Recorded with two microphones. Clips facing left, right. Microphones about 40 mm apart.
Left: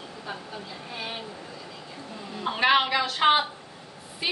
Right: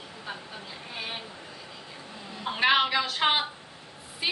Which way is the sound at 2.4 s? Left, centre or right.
Centre.